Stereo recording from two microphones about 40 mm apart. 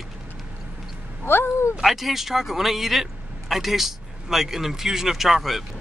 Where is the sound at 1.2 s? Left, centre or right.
Left.